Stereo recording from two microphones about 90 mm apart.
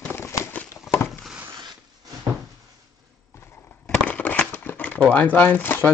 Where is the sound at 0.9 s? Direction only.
25° left (ahead or behind).